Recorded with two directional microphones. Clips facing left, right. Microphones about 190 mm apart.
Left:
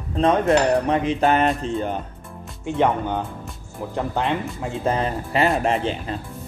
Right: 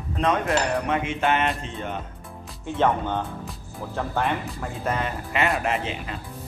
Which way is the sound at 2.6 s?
15° left (ahead or behind).